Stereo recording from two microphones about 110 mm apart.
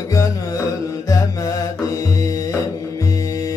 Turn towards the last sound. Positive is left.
turn(degrees=30)  # may be behind; listen again after turning